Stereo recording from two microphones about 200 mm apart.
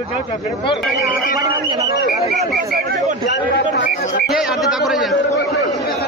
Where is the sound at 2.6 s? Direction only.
50° right (ahead or behind).